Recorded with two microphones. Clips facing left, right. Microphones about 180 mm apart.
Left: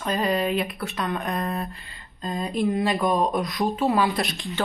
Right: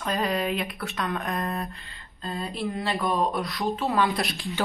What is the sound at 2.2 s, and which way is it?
Speech, 15° left (ahead or behind).